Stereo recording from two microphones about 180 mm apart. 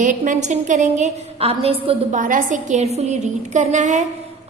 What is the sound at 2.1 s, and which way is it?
A woman's voice, 45° right (ahead or behind).